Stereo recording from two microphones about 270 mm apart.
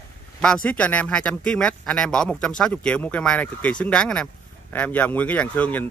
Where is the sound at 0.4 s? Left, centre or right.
Centre.